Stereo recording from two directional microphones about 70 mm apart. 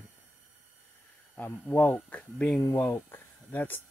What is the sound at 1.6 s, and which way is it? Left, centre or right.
Speech, left.